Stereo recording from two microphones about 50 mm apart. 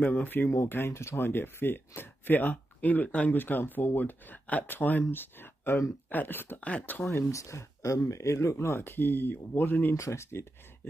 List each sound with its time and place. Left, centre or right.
0.0 s speech: left
0.7 s speech: left
7.1 s speech: left
9.9 s speech: left